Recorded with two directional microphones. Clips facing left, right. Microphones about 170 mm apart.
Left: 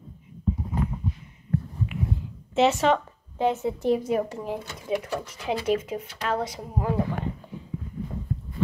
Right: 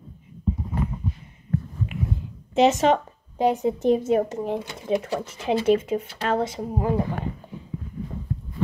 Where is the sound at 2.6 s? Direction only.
20° right (ahead or behind).